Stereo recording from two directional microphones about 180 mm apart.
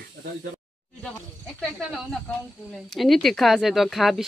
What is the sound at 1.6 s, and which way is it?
Speech, centre (ahead or behind).